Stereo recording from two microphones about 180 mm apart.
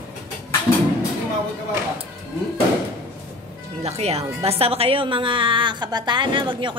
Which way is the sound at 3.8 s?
35° right (ahead or behind).